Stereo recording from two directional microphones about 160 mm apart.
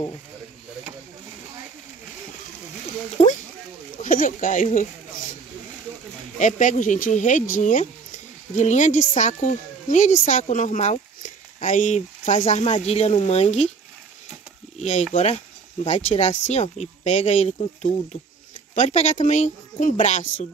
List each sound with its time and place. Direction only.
3.2 s speech: 45° left (ahead or behind)
6.3 s speech: 50° left (ahead or behind)
14.8 s speech: 45° left (ahead or behind)